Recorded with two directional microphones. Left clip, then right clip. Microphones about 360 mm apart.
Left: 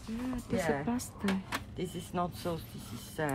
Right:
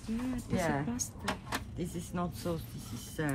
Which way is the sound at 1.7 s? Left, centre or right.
Left.